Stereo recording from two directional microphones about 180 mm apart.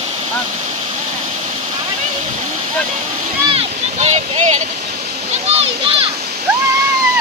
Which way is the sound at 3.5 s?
35° right (ahead or behind).